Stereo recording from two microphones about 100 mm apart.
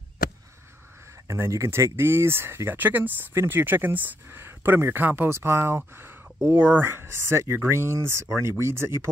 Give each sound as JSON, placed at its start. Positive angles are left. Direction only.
{"t": 1.2, "sound": "speech", "side_deg": -30}